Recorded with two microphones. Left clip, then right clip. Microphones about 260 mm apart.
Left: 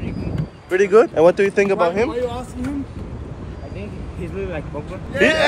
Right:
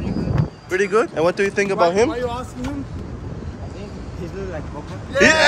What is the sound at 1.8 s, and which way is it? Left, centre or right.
Speech, right.